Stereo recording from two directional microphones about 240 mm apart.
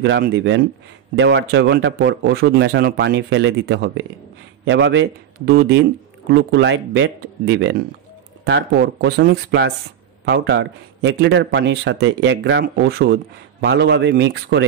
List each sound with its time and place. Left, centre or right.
0.0 s speech: right